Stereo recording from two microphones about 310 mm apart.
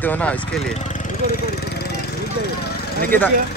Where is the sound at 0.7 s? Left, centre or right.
Left.